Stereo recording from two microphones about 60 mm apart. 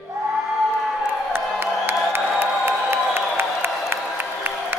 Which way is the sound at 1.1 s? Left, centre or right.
Right.